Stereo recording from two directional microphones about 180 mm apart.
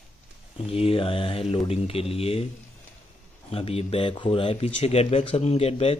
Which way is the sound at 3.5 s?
35° left (ahead or behind).